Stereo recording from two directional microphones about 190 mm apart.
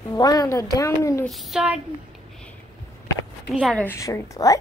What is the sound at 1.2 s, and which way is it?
Speech, centre (ahead or behind).